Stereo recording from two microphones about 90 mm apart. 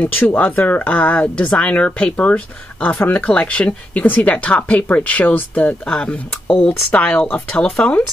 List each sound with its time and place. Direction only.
0.0 s speech: 20° left (ahead or behind)